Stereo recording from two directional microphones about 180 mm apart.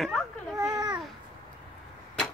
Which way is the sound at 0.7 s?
25° right (ahead or behind).